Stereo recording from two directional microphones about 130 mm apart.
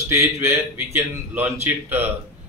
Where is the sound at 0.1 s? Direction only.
20° right (ahead or behind).